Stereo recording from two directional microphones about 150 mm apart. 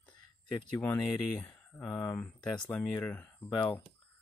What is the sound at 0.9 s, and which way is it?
Speech, 20° left (ahead or behind).